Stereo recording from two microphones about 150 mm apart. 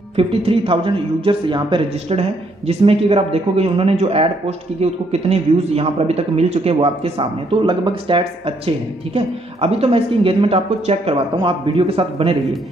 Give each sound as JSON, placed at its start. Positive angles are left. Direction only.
{"t": 0.1, "sound": "a man's voice", "side_deg": -40}